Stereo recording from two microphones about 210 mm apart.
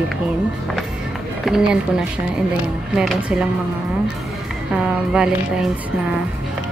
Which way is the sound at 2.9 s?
Centre (ahead or behind).